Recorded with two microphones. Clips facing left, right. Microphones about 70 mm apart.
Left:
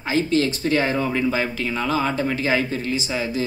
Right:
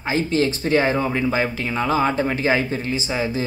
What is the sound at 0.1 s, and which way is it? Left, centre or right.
Speech, centre.